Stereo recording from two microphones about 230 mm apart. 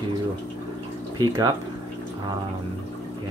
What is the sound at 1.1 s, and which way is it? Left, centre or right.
Speech, centre.